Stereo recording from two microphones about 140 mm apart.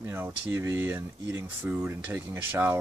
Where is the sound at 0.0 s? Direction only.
20° right (ahead or behind).